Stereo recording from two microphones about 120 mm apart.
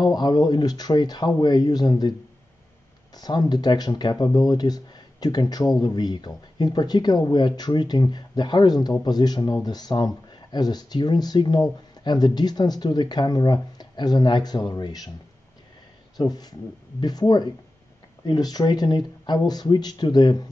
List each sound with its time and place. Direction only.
0.0 s speech: 35° left (ahead or behind)
3.2 s speech: 35° left (ahead or behind)
16.2 s speech: 35° left (ahead or behind)